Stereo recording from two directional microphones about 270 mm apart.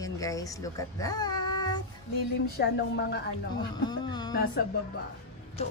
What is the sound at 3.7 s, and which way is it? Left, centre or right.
Speech, centre.